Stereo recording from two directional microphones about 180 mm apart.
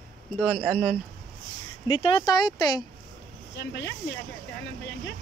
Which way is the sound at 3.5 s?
70° left (ahead or behind).